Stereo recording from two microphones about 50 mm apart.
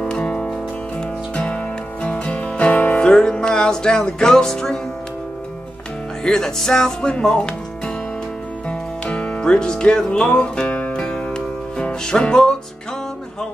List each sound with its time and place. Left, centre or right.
0.0 s music: centre
6.2 s speech: centre
8.6 s music: left